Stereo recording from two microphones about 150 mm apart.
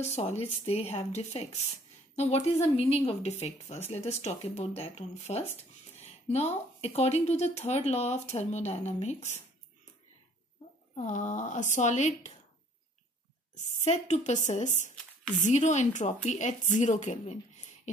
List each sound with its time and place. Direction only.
0.0 s speech: 45° left (ahead or behind)
11.0 s speech: 50° left (ahead or behind)
13.7 s speech: 45° left (ahead or behind)